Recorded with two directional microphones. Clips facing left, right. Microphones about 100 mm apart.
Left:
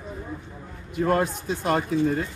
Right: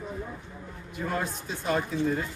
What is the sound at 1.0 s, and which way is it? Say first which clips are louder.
Speech: left 8 dB; 65° left (ahead or behind).